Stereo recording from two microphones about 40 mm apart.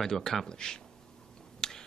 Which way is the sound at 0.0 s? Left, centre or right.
Centre.